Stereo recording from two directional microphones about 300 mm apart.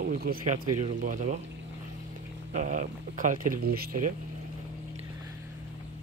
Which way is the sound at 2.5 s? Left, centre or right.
Right.